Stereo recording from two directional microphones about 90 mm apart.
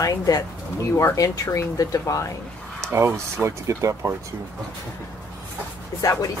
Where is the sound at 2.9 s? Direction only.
30° right (ahead or behind).